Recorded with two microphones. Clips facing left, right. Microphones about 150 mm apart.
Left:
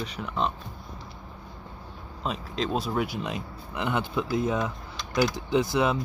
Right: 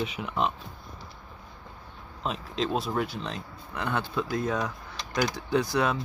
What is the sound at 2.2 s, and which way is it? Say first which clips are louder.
Speech: even; centre (ahead or behind).